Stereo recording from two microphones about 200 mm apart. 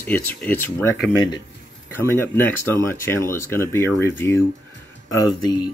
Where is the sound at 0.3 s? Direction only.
10° left (ahead or behind).